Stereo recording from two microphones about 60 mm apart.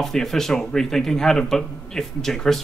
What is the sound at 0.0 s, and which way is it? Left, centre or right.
Speech, centre.